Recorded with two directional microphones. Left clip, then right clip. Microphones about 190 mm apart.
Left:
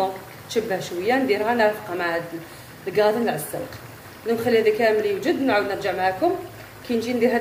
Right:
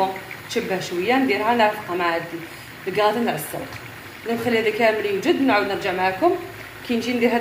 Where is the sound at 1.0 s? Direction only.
Centre (ahead or behind).